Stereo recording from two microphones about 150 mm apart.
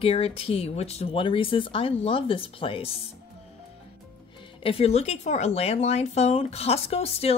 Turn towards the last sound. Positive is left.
turn(degrees=40)  # may be behind; listen again after turning